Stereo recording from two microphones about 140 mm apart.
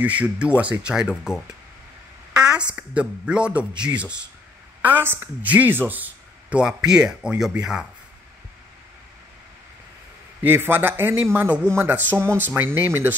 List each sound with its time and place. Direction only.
0.0 s a woman's voice: 10° right (ahead or behind)
10.4 s a woman's voice: 15° right (ahead or behind)